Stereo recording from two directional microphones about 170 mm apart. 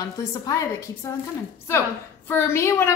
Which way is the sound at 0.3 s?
20° left (ahead or behind).